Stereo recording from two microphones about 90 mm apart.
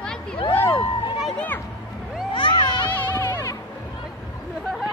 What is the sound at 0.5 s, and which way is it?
Speech, 25° left (ahead or behind).